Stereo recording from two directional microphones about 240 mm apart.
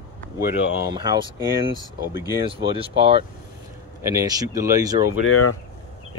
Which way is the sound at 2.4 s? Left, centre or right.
Right.